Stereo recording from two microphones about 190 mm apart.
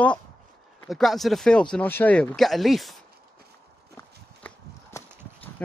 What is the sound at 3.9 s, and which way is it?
Walk, 15° left (ahead or behind).